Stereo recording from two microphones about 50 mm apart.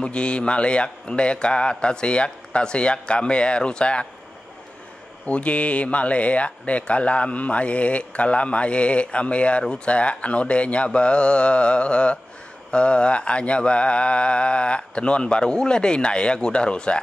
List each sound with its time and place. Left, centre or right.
0.0 s speech: left
5.2 s speech: left